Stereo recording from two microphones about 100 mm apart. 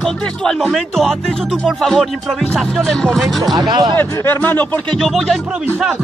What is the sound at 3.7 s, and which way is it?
Speech, 50° right (ahead or behind).